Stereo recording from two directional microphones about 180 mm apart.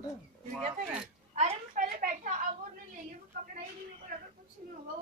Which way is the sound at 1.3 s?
40° right (ahead or behind).